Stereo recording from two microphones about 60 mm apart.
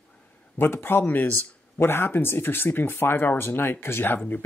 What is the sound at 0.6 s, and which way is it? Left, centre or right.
Speech, left.